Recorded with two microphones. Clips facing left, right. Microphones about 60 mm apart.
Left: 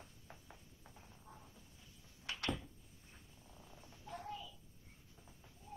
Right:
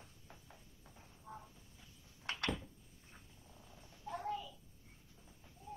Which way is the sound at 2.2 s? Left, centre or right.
Right.